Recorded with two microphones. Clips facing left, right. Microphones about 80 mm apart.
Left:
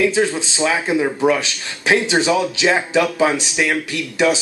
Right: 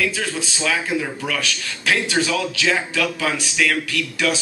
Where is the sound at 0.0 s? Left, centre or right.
Left.